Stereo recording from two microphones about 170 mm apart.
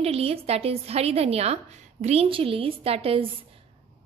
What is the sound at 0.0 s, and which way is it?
A woman's voice, 35° right (ahead or behind).